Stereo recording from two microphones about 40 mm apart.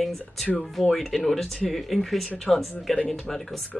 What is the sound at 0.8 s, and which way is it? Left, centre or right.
Speech, centre.